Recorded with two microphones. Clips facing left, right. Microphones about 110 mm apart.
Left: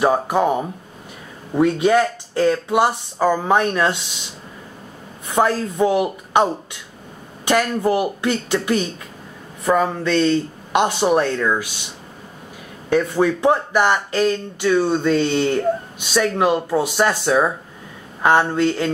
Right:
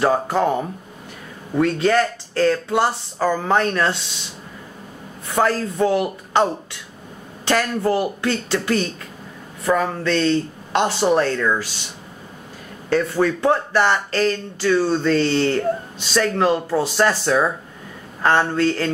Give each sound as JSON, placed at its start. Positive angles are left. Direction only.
{"t": 0.0, "sound": "speech", "side_deg": 15}
{"t": 5.3, "sound": "speech", "side_deg": 15}
{"t": 12.9, "sound": "speech", "side_deg": 15}